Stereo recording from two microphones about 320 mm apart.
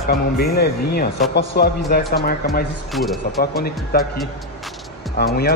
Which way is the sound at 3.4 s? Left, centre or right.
Left.